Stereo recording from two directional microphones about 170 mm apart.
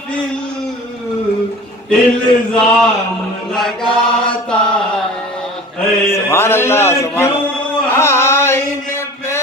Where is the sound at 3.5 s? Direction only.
5° left (ahead or behind).